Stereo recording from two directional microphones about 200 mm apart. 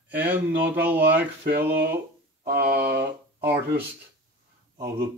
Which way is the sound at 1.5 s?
50° right (ahead or behind).